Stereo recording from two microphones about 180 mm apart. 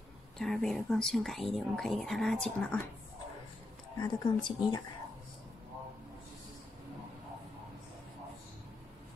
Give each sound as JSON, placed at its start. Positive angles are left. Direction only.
{"t": 0.4, "sound": "speech", "side_deg": 0}
{"t": 4.0, "sound": "speech", "side_deg": 25}